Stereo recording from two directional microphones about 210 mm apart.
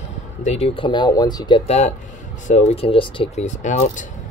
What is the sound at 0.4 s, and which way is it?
Speech, 30° left (ahead or behind).